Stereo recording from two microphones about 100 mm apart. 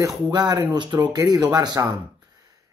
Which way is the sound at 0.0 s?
40° right (ahead or behind).